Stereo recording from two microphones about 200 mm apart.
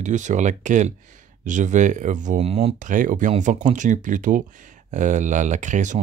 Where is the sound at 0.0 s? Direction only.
35° right (ahead or behind).